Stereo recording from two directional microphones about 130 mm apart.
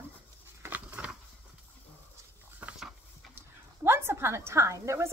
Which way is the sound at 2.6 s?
10° right (ahead or behind).